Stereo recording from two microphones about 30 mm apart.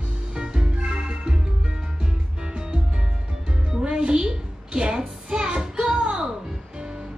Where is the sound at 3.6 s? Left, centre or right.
Right.